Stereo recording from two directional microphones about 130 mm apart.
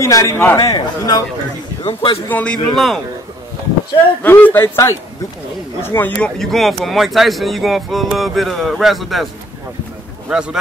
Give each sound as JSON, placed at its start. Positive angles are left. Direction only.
{"t": 0.0, "sound": "speech", "side_deg": 25}
{"t": 1.8, "sound": "speech", "side_deg": 40}
{"t": 2.2, "sound": "a man's voice", "side_deg": 10}
{"t": 4.2, "sound": "a man's voice", "side_deg": 15}